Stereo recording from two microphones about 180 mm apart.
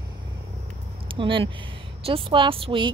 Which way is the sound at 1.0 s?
30° right (ahead or behind).